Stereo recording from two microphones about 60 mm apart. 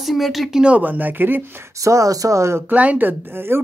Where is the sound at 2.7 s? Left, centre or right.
Right.